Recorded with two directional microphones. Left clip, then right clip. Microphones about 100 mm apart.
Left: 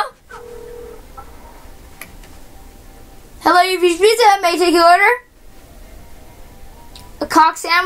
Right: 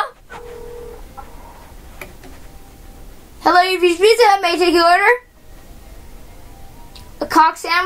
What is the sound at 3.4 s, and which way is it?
A woman's voice, 5° left (ahead or behind).